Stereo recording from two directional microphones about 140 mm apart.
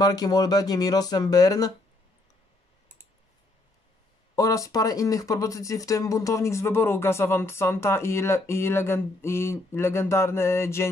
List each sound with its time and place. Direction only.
0.0 s speech: 30° left (ahead or behind)
4.4 s speech: 25° left (ahead or behind)